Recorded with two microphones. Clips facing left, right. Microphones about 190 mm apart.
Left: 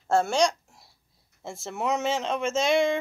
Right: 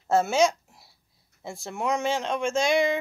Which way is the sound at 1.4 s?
Centre (ahead or behind).